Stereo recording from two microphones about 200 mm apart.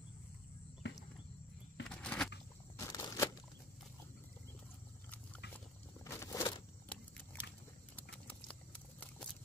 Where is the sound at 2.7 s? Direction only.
15° left (ahead or behind).